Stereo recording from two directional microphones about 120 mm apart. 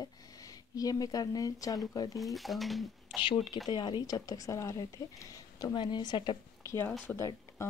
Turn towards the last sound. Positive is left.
turn(degrees=25)  # may be behind; listen again after turning